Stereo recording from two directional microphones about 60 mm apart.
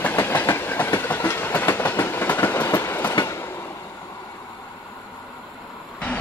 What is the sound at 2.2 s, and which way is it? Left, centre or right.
Train, left.